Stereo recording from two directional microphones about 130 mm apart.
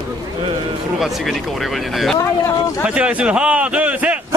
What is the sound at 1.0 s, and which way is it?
A man's voice, centre (ahead or behind).